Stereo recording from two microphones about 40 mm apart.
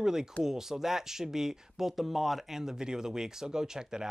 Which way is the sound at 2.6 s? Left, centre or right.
Centre.